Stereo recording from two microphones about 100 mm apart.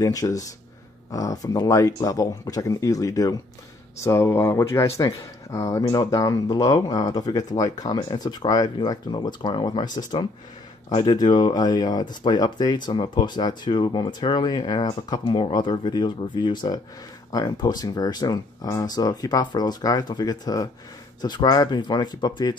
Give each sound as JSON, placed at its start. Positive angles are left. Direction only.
{"t": 0.0, "sound": "speech", "side_deg": 35}